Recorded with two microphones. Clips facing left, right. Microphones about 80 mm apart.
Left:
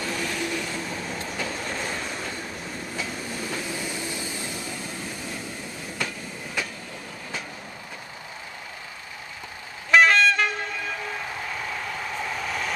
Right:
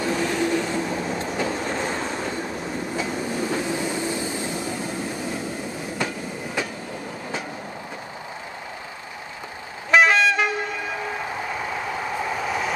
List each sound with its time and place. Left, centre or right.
0.0 s train: right
5.9 s train: right
9.8 s train: centre